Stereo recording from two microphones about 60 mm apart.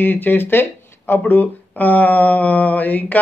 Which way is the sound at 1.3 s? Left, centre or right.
Left.